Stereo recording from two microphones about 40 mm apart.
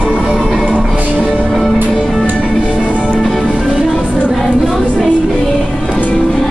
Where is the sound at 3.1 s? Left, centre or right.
Centre.